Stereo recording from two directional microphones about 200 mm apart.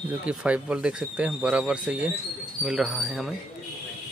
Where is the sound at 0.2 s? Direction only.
5° right (ahead or behind).